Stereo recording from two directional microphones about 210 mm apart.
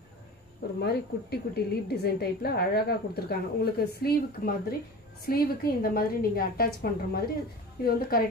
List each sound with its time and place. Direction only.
0.7 s a woman's voice: 50° left (ahead or behind)